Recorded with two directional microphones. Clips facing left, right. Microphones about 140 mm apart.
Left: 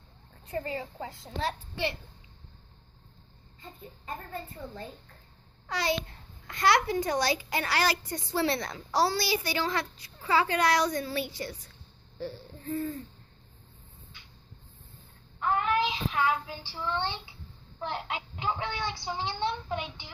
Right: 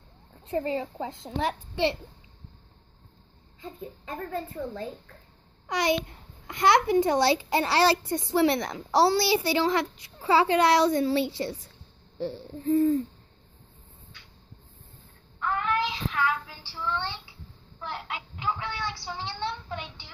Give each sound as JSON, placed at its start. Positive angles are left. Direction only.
{"t": 0.5, "sound": "a child's voice", "side_deg": -20}
{"t": 4.0, "sound": "a woman's voice", "side_deg": -90}
{"t": 5.7, "sound": "a child's voice", "side_deg": -20}
{"t": 15.4, "sound": "child singing", "side_deg": 20}